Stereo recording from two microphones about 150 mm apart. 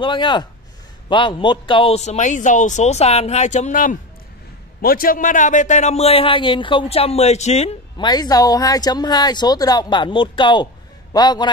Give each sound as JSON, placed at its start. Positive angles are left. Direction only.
{"t": 0.0, "sound": "a man's voice", "side_deg": 35}
{"t": 4.8, "sound": "a man's voice", "side_deg": 75}
{"t": 8.0, "sound": "speech", "side_deg": 25}